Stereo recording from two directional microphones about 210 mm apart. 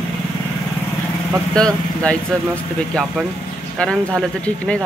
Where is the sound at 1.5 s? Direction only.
5° left (ahead or behind).